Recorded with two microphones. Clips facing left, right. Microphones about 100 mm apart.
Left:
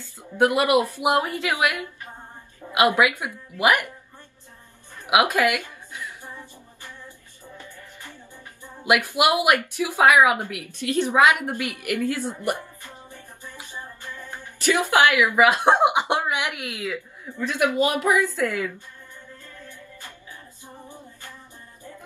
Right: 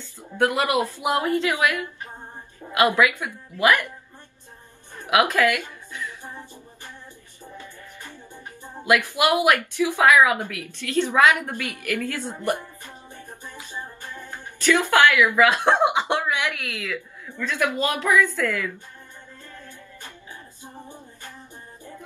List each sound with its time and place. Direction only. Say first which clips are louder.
0.4 s a woman's voice: left 2 dB; 20° left (ahead or behind)
5.0 s speech: even; 15° left (ahead or behind)
7.6 s music: right 1 dB; 20° right (ahead or behind)
8.8 s a woman's voice: even; 15° left (ahead or behind)
13.7 s music: right 2 dB; 20° right (ahead or behind)
14.6 s speech: right 1 dB; 15° left (ahead or behind)
20.6 s music: right 1 dB; 20° right (ahead or behind)